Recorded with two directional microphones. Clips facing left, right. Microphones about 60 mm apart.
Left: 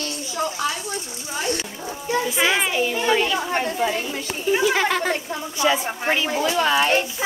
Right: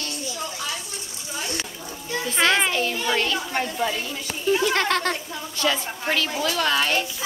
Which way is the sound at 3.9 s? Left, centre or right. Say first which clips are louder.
Left 3 dB; left.